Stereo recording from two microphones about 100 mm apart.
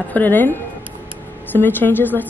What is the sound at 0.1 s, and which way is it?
A woman's voice, 20° left (ahead or behind).